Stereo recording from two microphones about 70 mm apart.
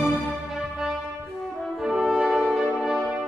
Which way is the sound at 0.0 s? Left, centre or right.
Centre.